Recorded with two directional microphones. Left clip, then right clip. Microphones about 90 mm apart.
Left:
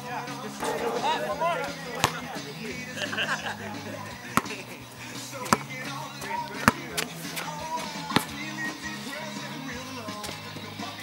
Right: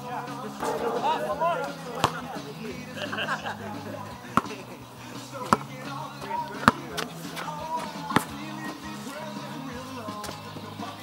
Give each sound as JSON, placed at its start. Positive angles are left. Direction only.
{"t": 0.1, "sound": "music", "side_deg": 25}
{"t": 4.4, "sound": "chop", "side_deg": 30}
{"t": 5.5, "sound": "music", "side_deg": 30}
{"t": 8.2, "sound": "music", "side_deg": 10}